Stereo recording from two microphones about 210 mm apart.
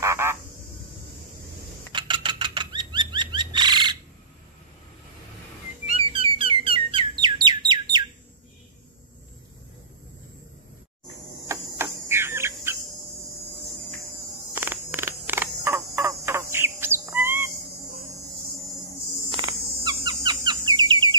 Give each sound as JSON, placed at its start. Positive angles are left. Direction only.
{"t": 0.0, "sound": "frog", "side_deg": -10}
{"t": 1.9, "sound": "bird flight", "side_deg": -20}
{"t": 5.9, "sound": "bird", "side_deg": -25}
{"t": 11.4, "sound": "cricket", "side_deg": -15}
{"t": 14.5, "sound": "frog", "side_deg": -10}
{"t": 19.3, "sound": "insect", "side_deg": -20}